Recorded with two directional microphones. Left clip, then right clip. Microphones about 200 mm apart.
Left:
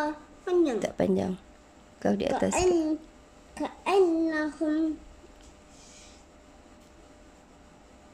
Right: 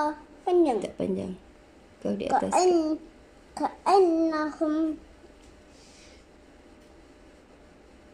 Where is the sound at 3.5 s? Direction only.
10° left (ahead or behind).